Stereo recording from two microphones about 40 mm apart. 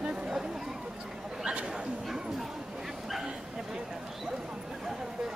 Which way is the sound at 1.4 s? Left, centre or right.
Right.